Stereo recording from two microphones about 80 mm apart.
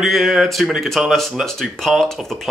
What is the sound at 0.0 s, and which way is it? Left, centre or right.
Speech, centre.